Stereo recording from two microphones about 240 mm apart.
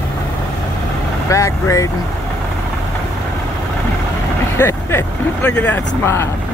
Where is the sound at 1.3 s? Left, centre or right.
Centre.